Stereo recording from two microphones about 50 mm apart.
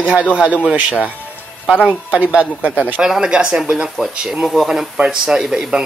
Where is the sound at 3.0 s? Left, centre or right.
Centre.